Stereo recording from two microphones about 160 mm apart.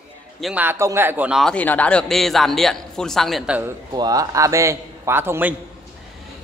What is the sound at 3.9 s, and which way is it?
A man's voice, 25° right (ahead or behind).